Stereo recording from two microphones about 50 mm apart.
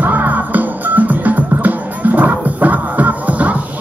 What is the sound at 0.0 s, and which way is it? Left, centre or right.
Music, right.